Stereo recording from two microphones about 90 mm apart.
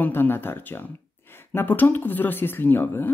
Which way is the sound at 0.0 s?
20° left (ahead or behind).